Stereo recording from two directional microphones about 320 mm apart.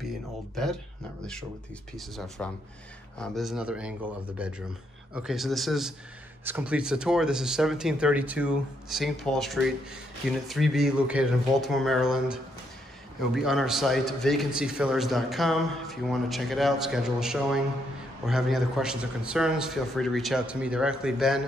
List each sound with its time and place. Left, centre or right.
2.0 s a man's voice: centre